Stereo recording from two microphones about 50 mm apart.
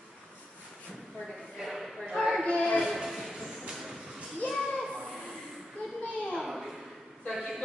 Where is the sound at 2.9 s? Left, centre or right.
Centre.